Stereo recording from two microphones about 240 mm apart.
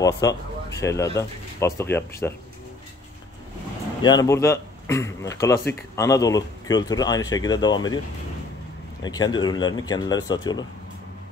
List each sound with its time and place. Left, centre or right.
0.0 s speech: centre
4.0 s a man's voice: centre
9.0 s a man's voice: centre